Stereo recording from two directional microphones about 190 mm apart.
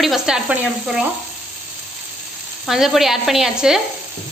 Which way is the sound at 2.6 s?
Centre (ahead or behind).